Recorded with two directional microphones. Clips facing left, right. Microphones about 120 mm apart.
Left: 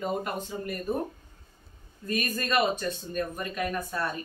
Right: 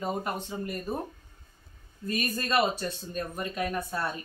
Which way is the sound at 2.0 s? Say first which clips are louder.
Left 1 dB; 30° right (ahead or behind).